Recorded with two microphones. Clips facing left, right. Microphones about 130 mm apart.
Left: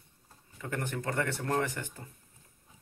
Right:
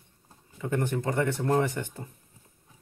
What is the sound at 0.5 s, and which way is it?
Speech, 20° right (ahead or behind).